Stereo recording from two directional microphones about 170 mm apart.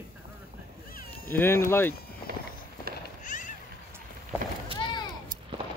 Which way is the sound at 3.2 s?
50° left (ahead or behind).